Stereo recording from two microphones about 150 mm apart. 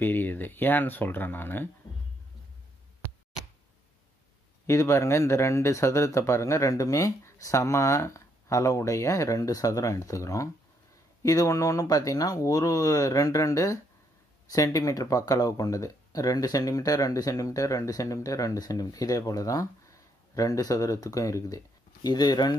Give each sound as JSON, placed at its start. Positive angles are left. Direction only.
{"t": 0.0, "sound": "speech", "side_deg": 15}
{"t": 4.6, "sound": "speech", "side_deg": 20}